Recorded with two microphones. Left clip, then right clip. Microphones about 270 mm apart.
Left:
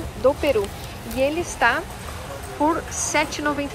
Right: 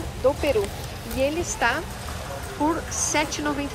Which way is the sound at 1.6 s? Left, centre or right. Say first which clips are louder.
Left 5 dB; centre.